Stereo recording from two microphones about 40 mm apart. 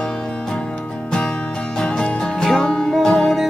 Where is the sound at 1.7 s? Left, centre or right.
Left.